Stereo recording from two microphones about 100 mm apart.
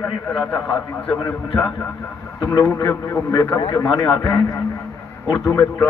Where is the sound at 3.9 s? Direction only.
40° left (ahead or behind).